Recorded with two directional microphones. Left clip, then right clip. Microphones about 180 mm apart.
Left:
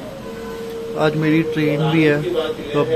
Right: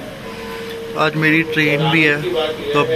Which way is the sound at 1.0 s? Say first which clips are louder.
Right 2 dB; 15° left (ahead or behind).